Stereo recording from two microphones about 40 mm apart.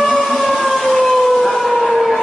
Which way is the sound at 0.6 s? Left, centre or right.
Centre.